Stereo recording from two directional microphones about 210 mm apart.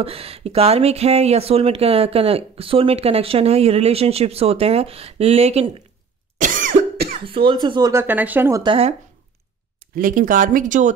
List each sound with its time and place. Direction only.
0.0 s speech: 30° right (ahead or behind)
6.3 s cough: 40° right (ahead or behind)
7.4 s speech: 20° right (ahead or behind)
9.9 s speech: 40° right (ahead or behind)